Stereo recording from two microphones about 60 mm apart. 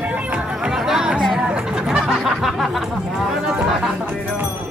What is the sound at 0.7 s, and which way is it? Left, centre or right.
Music, centre.